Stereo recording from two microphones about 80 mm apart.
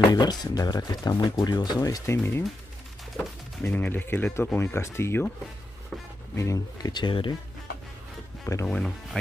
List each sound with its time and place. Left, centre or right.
0.1 s speech: left
3.2 s speech: left
6.3 s speech: left
6.9 s speech: left
8.6 s speech: centre